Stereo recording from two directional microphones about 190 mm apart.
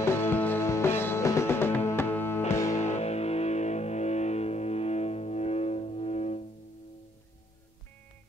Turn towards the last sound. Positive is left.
turn(degrees=35)  # may be behind; listen again after turning